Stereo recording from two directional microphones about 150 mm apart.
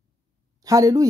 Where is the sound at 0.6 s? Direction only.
25° right (ahead or behind).